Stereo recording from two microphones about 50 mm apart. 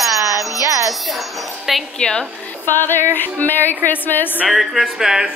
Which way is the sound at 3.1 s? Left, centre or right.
Left.